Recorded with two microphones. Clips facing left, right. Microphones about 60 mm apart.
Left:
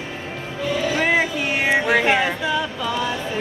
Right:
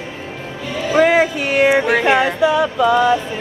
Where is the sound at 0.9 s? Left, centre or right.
Right.